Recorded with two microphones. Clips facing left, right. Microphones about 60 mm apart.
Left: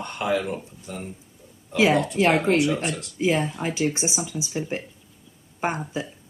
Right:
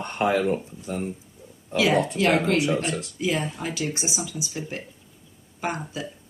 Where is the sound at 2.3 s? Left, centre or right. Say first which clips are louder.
Left 1 dB; left.